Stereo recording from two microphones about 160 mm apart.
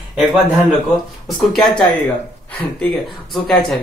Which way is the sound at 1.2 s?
Centre (ahead or behind).